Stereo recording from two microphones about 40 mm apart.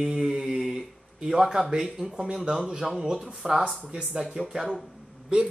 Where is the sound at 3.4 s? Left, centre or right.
Centre.